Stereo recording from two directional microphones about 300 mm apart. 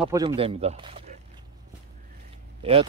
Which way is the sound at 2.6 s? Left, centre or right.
Centre.